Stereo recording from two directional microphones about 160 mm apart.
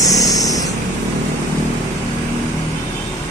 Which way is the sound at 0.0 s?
20° left (ahead or behind).